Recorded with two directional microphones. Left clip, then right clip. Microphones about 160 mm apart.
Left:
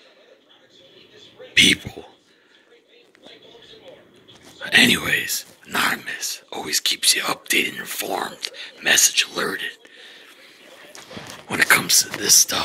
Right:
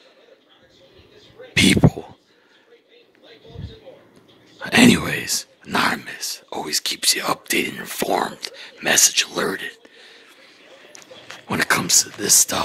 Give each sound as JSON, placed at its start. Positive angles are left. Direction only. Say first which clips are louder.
{"t": 1.5, "sound": "speech", "louder": "left 1 dB", "side_deg": -50}
{"t": 4.6, "sound": "speech", "louder": "even", "side_deg": -50}
{"t": 11.4, "sound": "speech", "louder": "left 3 dB", "side_deg": -40}